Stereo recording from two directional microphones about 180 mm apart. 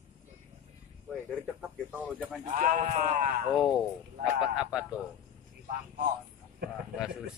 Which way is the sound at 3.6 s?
Centre (ahead or behind).